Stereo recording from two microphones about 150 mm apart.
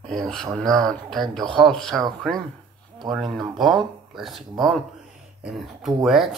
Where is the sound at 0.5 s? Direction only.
5° left (ahead or behind).